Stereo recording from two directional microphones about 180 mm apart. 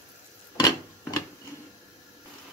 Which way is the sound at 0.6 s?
20° left (ahead or behind).